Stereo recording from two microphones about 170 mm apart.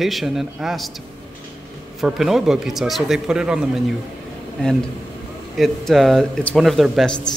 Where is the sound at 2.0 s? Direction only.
Centre (ahead or behind).